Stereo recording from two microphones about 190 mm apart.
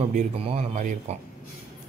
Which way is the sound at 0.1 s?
40° right (ahead or behind).